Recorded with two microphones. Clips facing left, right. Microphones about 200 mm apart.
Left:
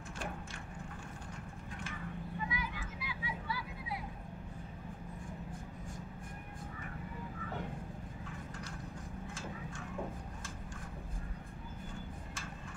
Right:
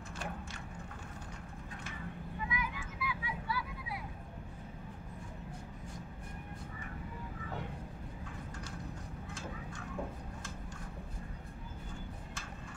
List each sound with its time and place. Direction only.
2.4 s vehicle: 30° left (ahead or behind)